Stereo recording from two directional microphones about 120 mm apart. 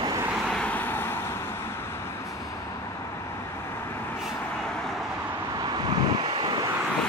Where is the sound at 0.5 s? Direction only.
10° left (ahead or behind).